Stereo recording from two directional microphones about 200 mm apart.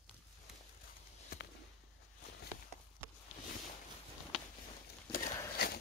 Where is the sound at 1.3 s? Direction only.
50° left (ahead or behind).